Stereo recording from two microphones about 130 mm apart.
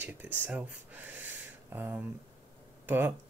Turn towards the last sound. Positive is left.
turn(degrees=-15)  # may be behind; listen again after turning